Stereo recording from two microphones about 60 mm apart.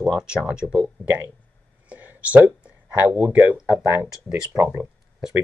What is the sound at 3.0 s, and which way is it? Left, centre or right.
Speech, right.